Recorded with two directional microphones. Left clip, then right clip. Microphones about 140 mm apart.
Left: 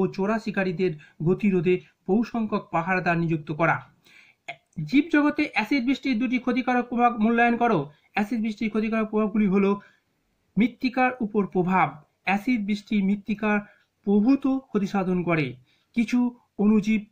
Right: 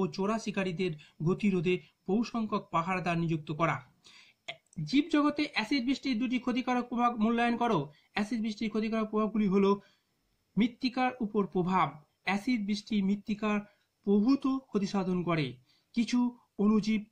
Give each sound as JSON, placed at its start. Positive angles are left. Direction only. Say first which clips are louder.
{"t": 0.0, "sound": "speech", "louder": "left 7 dB", "side_deg": -25}